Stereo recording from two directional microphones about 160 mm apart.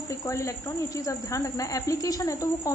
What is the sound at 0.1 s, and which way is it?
Speech, 20° left (ahead or behind).